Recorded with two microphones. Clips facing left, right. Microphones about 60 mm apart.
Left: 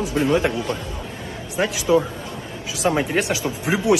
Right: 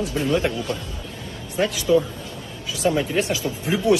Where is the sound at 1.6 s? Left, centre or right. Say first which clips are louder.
Even; centre.